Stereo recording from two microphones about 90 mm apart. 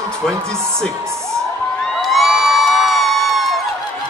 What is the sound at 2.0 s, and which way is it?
Crowd, centre (ahead or behind).